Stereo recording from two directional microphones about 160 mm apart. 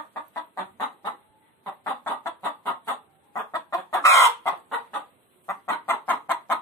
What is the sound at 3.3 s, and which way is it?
Chicken, 20° left (ahead or behind).